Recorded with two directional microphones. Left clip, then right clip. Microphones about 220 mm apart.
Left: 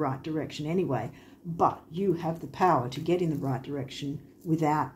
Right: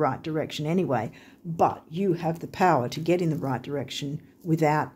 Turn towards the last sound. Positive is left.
turn(degrees=-50)  # may be behind; listen again after turning